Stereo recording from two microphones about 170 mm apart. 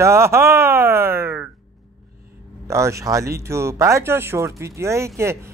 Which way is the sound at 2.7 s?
15° right (ahead or behind).